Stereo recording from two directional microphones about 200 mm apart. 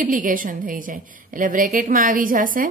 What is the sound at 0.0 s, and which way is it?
A woman's voice, 40° right (ahead or behind).